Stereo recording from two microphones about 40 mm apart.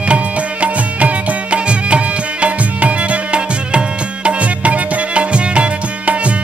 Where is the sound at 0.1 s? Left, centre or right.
Right.